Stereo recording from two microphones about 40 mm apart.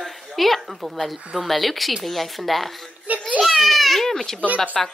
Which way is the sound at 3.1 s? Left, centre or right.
Right.